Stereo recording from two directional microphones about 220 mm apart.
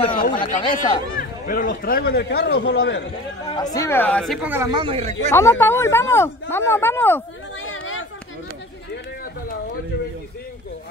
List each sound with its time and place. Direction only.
0.2 s speech: 40° left (ahead or behind)
3.5 s a man's voice: 15° left (ahead or behind); by 5.1 s 25° right (ahead or behind)
5.3 s speech: 10° left (ahead or behind)
7.6 s a sound: 65° left (ahead or behind)